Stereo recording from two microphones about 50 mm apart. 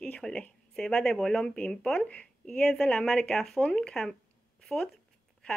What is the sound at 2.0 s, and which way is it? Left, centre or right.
Speech, left.